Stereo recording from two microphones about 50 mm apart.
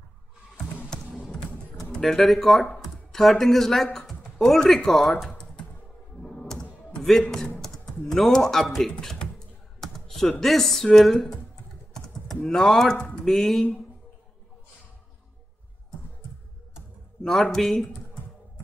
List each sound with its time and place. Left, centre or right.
1.3 s typing: centre
3.1 s speech: centre
6.2 s door: centre
7.0 s speech: centre
9.8 s computer keyboard: centre
10.4 s speech: centre
12.4 s speech: centre
17.2 s speech: centre